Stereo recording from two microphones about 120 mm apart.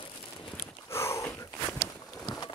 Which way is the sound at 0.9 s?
20° left (ahead or behind).